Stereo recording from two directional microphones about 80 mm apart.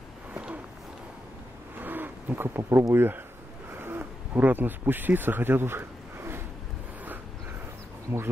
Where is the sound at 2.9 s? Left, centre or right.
Right.